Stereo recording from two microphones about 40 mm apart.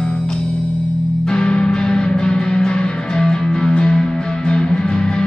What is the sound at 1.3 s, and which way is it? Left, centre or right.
Music, left.